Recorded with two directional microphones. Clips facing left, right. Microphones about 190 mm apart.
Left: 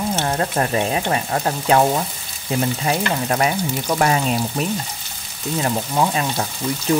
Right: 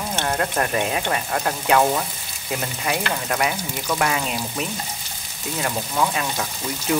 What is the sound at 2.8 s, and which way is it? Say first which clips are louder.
Speech: left 4 dB; 30° left (ahead or behind).